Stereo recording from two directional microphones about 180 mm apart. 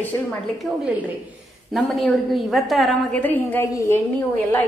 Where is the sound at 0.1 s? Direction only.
15° left (ahead or behind).